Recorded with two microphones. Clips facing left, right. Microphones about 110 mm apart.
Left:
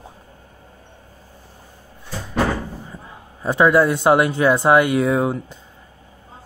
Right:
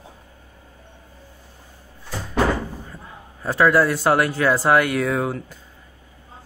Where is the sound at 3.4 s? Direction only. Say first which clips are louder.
Left 2 dB; 20° left (ahead or behind).